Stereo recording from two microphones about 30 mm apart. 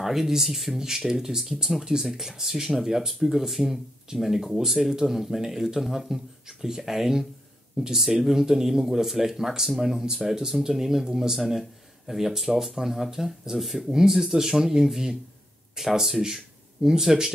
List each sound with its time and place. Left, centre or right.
0.0 s speech: centre